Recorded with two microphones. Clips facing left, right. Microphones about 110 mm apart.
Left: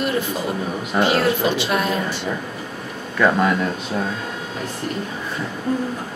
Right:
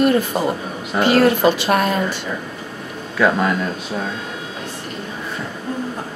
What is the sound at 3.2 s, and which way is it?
Speech, centre (ahead or behind).